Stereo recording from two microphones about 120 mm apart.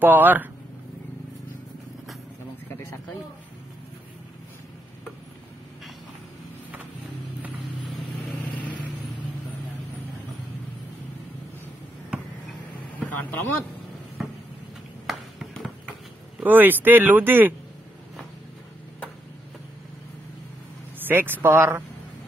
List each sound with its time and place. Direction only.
0.0 s speech: 15° right (ahead or behind)
8.5 s vehicle: 15° left (ahead or behind)
13.0 s speech: 15° left (ahead or behind)
15.0 s a sound: centre (ahead or behind)
16.4 s speech: 15° right (ahead or behind)
21.1 s speech: 15° right (ahead or behind)